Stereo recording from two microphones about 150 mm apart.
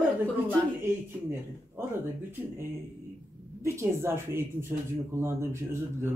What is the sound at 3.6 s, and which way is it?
Speech, 15° right (ahead or behind).